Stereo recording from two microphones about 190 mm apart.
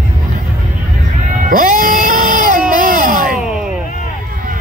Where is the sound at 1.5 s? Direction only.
45° right (ahead or behind).